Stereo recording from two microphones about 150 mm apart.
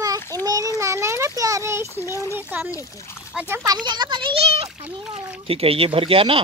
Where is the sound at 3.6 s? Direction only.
30° right (ahead or behind).